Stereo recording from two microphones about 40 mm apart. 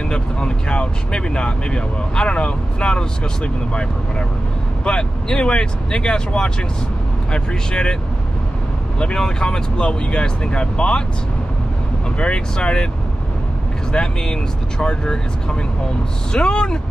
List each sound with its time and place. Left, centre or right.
0.1 s speech: left
4.8 s speech: left
9.0 s speech: left
12.2 s speech: left
13.9 s speech: left
16.3 s speech: left